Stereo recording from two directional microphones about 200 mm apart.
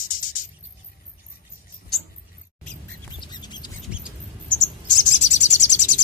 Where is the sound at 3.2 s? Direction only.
20° left (ahead or behind).